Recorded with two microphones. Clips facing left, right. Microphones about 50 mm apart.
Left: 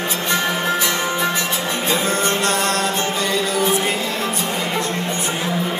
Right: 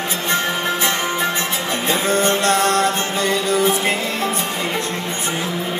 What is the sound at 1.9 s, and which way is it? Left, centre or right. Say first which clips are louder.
Music: right 3 dB; right.